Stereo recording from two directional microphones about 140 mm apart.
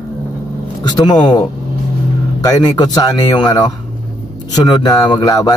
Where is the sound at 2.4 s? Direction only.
25° left (ahead or behind).